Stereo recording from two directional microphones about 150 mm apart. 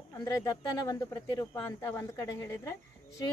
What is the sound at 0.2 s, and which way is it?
Speech, 25° left (ahead or behind).